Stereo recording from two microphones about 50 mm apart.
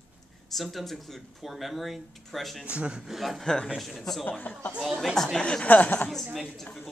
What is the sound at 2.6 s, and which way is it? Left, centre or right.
Speech, right.